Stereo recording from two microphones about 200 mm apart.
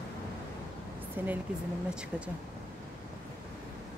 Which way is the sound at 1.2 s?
10° right (ahead or behind).